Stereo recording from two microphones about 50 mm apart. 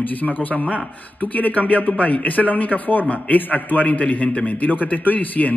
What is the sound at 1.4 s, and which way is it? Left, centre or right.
Speech, left.